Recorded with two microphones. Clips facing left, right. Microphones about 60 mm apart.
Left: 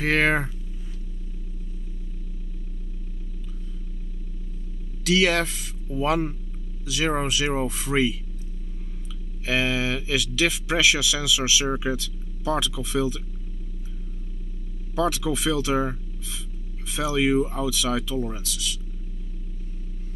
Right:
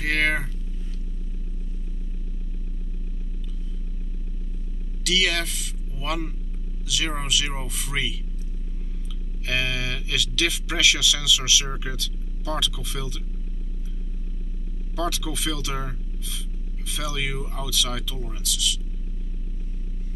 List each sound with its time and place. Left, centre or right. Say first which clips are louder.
0.0 s speech: left 3 dB; left
5.0 s speech: left 4 dB; left
9.5 s speech: left 4 dB; left
15.0 s speech: left 4 dB; left